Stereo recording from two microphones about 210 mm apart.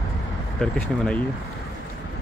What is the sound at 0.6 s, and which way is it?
Speech, 5° left (ahead or behind).